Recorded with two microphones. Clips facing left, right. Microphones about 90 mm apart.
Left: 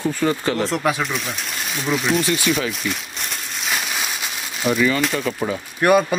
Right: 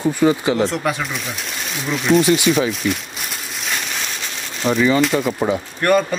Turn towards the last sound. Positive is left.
turn(degrees=10)  # may be behind; listen again after turning